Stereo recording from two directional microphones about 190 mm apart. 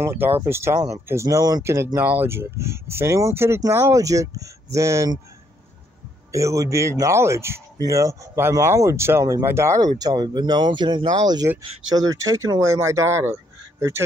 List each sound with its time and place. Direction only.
0.0 s speech: 10° right (ahead or behind)
6.3 s speech: 15° right (ahead or behind)